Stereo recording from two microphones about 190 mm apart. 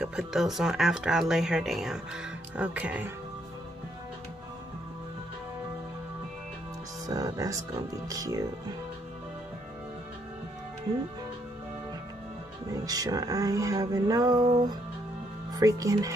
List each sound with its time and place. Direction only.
0.0 s speech: 5° right (ahead or behind)
7.1 s music: 20° right (ahead or behind)
12.7 s music: 20° right (ahead or behind)
15.5 s speech: 15° right (ahead or behind)